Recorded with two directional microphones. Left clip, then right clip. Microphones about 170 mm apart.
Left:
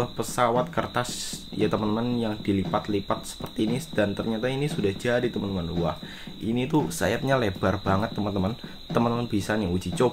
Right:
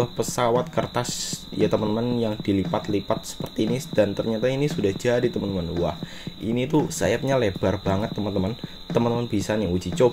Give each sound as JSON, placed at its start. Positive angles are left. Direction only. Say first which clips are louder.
{"t": 0.0, "sound": "speech", "louder": "right 1 dB", "side_deg": -20}
{"t": 6.4, "sound": "speech", "louder": "right 2 dB", "side_deg": -10}